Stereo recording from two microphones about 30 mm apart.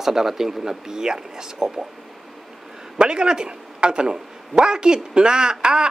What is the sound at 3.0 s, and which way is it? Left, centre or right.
Speech, right.